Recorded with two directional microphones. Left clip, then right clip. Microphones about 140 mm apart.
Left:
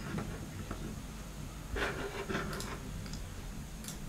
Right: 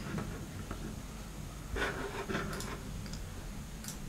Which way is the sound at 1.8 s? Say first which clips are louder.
Even; centre (ahead or behind).